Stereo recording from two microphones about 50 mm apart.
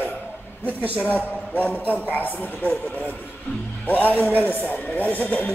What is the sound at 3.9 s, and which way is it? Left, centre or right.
A man's voice, left.